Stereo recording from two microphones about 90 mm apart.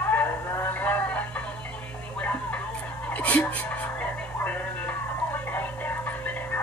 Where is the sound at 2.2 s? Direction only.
15° left (ahead or behind).